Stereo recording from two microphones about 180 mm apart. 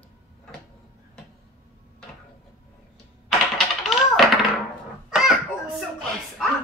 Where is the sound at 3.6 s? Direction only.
Centre (ahead or behind).